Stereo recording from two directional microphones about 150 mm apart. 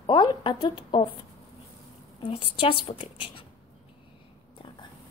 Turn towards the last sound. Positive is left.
turn(degrees=35)  # may be behind; listen again after turning